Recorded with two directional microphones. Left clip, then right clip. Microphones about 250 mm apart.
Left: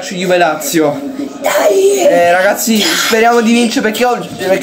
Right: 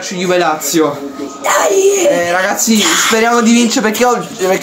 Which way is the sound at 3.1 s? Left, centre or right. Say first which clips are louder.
Left 1 dB; centre.